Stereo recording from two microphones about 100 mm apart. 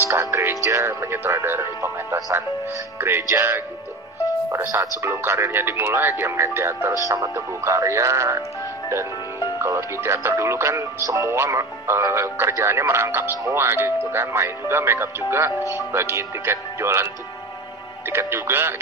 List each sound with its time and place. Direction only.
0.0 s speech: 30° right (ahead or behind)
4.7 s speech: 30° right (ahead or behind)
18.1 s speech: 25° right (ahead or behind)